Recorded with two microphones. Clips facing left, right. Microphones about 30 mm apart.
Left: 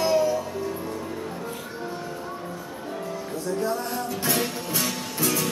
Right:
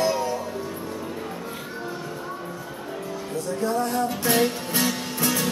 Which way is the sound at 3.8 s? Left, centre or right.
Centre.